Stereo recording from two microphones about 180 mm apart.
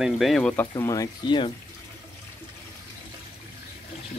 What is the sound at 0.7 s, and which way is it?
Speech, 20° left (ahead or behind).